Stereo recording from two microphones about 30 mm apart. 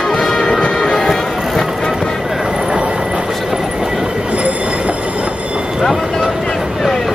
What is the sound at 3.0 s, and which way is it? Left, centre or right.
Train, right.